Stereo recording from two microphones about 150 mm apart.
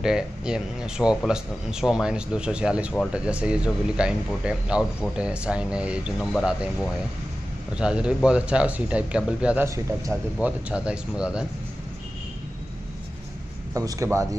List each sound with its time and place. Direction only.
0.0 s speech: 5° right (ahead or behind)
13.7 s speech: 20° right (ahead or behind)